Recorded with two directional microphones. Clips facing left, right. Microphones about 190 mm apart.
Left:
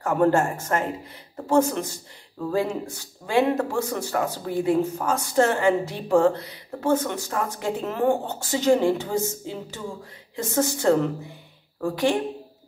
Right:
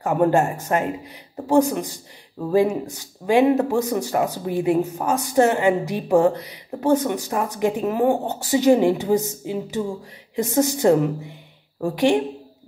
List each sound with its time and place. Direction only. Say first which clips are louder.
0.0 s speech: right 2 dB; 15° right (ahead or behind)